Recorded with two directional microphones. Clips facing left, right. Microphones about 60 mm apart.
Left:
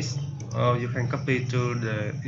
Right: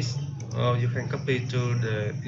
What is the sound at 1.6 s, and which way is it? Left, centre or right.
Speech, centre.